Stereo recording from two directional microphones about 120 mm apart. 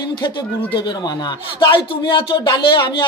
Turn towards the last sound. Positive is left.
turn(degrees=45)  # may be behind; listen again after turning